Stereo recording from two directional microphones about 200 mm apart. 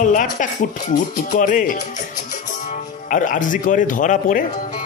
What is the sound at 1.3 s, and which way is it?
Music, 40° left (ahead or behind).